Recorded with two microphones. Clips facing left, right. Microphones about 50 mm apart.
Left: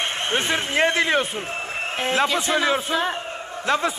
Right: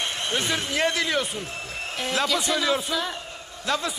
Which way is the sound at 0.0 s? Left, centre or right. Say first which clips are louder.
Left 3 dB; left.